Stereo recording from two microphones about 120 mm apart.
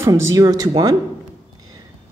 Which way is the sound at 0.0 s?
25° right (ahead or behind).